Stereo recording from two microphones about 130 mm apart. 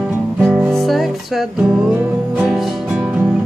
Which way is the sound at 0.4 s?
10° right (ahead or behind).